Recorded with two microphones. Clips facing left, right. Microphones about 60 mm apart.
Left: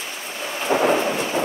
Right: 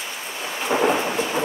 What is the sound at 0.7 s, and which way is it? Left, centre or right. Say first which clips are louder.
Thunder: left 1 dB; right.